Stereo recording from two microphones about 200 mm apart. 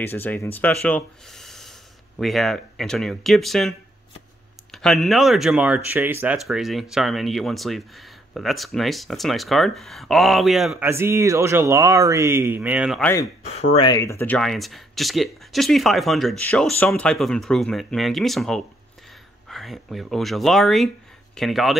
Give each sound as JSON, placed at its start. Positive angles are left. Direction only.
{"t": 0.0, "sound": "speech", "side_deg": 10}
{"t": 10.9, "sound": "speech", "side_deg": -15}
{"t": 13.0, "sound": "speech", "side_deg": 15}
{"t": 13.4, "sound": "speech", "side_deg": 35}
{"t": 13.8, "sound": "speech", "side_deg": 15}